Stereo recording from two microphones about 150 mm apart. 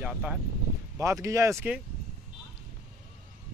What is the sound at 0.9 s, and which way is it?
Speech, 20° right (ahead or behind).